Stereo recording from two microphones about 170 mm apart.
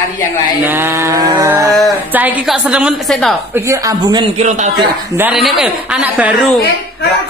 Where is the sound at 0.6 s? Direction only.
10° right (ahead or behind).